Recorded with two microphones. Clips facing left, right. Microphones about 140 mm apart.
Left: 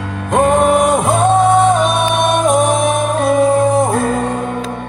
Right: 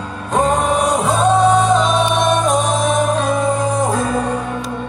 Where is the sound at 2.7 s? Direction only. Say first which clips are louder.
Left 2 dB; 60° left (ahead or behind).